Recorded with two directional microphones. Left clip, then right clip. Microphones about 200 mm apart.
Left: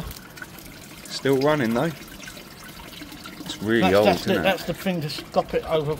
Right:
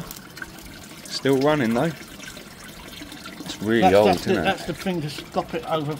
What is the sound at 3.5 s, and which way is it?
Speech, 5° right (ahead or behind).